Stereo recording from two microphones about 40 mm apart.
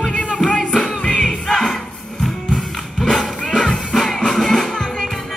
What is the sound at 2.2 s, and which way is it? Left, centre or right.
Music, centre.